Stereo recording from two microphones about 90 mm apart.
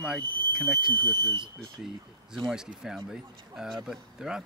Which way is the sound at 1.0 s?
50° right (ahead or behind).